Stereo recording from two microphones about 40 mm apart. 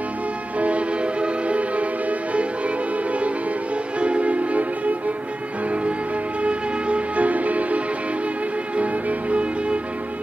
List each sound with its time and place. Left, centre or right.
0.6 s music: right
6.4 s music: right